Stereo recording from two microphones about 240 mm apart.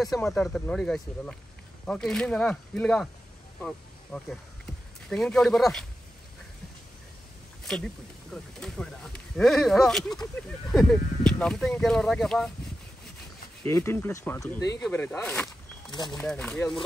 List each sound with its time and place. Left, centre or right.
0.0 s speech: centre
7.6 s speech: centre
13.7 s speech: centre
15.9 s speech: centre
16.2 s speech: centre